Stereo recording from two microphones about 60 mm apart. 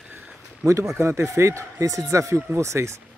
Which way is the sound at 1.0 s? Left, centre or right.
Right.